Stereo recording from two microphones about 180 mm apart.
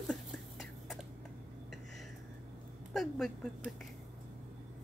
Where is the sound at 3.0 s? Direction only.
Centre (ahead or behind).